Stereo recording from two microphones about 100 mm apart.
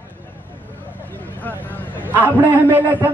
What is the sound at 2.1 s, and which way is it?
Speech, 15° right (ahead or behind).